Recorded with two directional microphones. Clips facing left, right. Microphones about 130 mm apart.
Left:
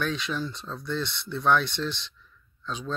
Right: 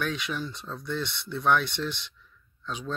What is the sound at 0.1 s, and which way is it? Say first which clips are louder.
Speech: left 2 dB; 15° right (ahead or behind).